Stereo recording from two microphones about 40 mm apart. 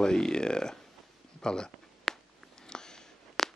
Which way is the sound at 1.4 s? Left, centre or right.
Centre.